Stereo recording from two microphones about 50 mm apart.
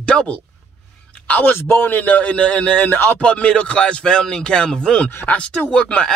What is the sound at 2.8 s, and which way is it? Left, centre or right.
Speech, left.